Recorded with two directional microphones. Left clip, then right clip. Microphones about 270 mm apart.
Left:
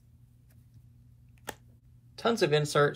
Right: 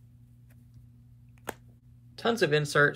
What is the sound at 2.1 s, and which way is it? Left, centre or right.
Speech, centre.